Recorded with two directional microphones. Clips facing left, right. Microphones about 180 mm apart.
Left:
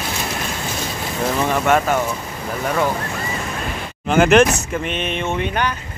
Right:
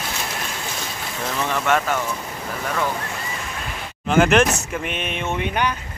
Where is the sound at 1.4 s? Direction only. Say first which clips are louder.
Left 3 dB; 45° left (ahead or behind).